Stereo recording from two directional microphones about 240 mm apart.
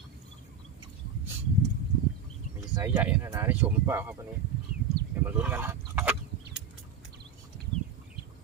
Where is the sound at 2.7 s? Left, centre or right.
Centre.